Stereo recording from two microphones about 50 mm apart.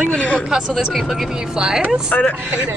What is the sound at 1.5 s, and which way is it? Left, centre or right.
Speech, centre.